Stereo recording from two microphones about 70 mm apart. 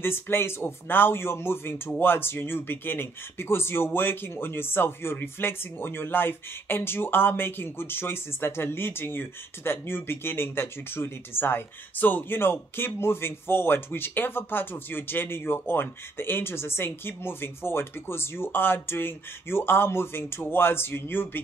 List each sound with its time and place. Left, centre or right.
0.0 s speech: left